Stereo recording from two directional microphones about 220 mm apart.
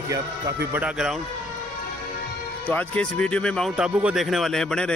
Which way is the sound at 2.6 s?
5° left (ahead or behind).